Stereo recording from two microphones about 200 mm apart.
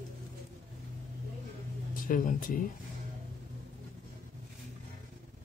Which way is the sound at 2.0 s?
45° left (ahead or behind).